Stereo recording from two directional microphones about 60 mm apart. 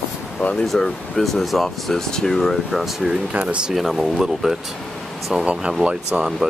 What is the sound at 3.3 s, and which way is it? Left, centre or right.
Speech, centre.